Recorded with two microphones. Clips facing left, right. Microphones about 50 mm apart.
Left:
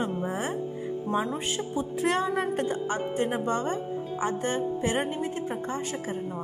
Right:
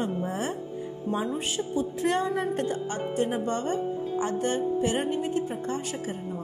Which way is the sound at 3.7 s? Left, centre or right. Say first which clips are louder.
Right 3 dB; centre.